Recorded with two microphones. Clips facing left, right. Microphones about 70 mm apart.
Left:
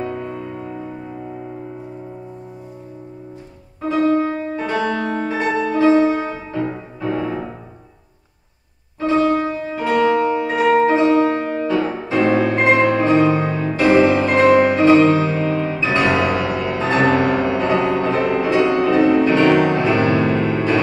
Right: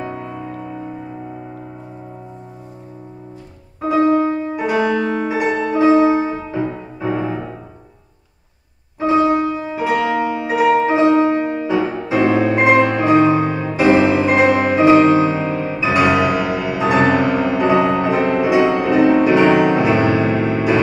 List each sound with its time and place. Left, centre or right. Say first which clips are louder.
0.0 s music: left 1 dB; centre
3.8 s music: right 2 dB; centre
9.0 s music: right 2 dB; centre